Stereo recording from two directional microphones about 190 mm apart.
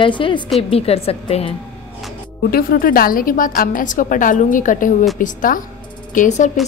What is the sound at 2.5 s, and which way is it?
A woman's voice, 50° left (ahead or behind).